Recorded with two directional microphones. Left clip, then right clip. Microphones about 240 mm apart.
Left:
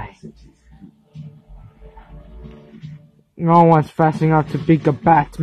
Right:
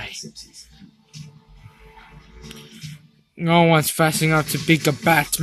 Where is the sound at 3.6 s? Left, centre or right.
Right.